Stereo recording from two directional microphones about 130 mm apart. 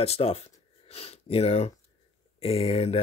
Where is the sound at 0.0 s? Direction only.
50° left (ahead or behind).